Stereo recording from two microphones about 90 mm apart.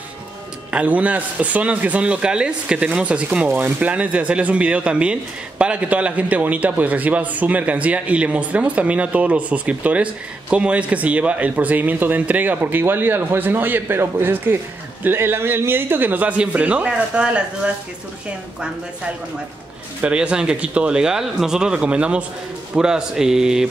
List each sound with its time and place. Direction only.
0.7 s a man's voice: 15° right (ahead or behind)
20.0 s a man's voice: 10° right (ahead or behind)